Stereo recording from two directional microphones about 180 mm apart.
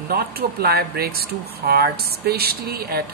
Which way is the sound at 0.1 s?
60° right (ahead or behind).